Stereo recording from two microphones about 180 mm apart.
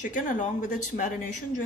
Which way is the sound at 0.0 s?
45° left (ahead or behind).